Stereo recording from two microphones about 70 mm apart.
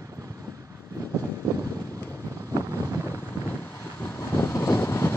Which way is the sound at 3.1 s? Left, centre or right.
Left.